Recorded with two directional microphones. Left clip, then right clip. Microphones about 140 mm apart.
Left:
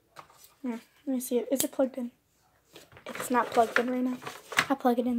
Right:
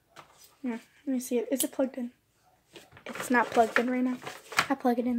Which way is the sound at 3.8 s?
30° right (ahead or behind).